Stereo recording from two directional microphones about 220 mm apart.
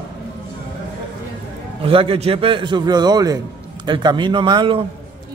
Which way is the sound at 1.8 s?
25° right (ahead or behind).